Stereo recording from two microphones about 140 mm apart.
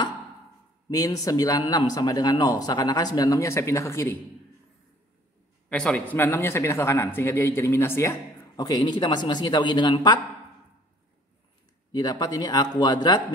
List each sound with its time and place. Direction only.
0.8 s speech: 25° left (ahead or behind)
5.7 s a man's voice: 5° left (ahead or behind)
8.5 s a man's voice: 30° left (ahead or behind)
11.9 s speech: 30° left (ahead or behind)